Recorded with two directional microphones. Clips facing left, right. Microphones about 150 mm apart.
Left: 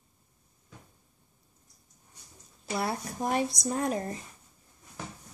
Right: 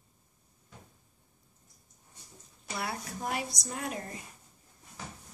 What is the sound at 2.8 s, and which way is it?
A woman's voice, 40° left (ahead or behind).